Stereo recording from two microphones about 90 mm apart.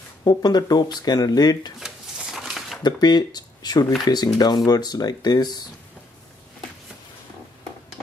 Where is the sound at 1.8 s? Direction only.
5° right (ahead or behind).